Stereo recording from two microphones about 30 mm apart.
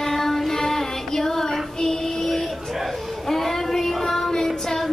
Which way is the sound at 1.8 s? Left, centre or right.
Centre.